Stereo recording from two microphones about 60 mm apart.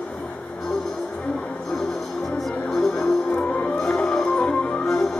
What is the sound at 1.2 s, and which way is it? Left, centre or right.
Music, left.